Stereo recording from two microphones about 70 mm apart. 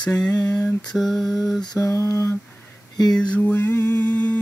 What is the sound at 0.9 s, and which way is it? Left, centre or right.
Mantra, centre.